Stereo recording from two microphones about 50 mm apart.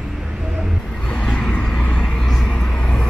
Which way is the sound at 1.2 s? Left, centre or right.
Centre.